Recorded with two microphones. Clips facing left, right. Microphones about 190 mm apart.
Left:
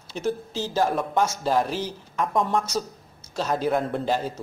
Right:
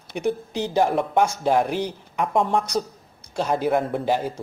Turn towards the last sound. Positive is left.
turn(degrees=-10)  # may be behind; listen again after turning